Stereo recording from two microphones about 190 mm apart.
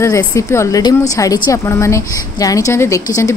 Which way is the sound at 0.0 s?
15° left (ahead or behind).